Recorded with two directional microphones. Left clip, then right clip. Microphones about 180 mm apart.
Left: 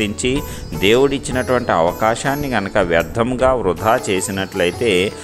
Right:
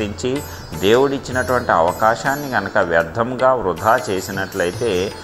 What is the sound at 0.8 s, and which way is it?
Speech, 35° left (ahead or behind).